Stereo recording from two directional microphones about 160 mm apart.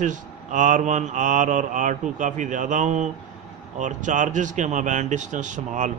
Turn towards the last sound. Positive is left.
turn(degrees=-50)  # may be behind; listen again after turning